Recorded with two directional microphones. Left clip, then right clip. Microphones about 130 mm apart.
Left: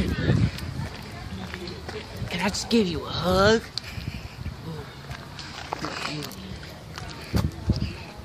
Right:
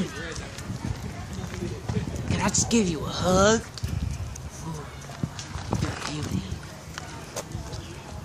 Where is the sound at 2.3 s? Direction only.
10° left (ahead or behind).